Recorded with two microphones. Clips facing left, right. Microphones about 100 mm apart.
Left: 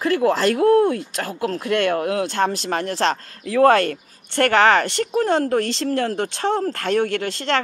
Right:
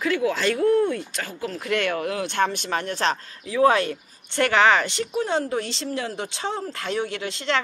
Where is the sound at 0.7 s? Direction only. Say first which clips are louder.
Left 5 dB; 60° left (ahead or behind).